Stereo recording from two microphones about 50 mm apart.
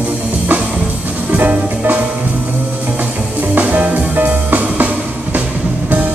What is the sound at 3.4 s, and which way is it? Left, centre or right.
Music, right.